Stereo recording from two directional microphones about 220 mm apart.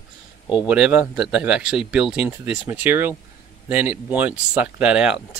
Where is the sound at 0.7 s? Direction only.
5° right (ahead or behind).